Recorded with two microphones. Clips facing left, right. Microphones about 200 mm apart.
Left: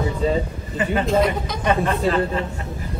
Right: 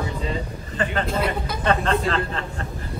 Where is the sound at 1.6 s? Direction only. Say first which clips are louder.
Left 2 dB; 15° left (ahead or behind).